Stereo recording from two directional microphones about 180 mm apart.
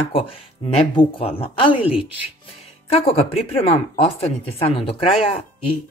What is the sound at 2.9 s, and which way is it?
Speech, 35° left (ahead or behind).